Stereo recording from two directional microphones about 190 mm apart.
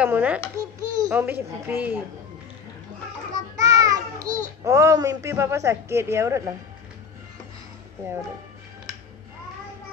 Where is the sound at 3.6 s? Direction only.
20° right (ahead or behind).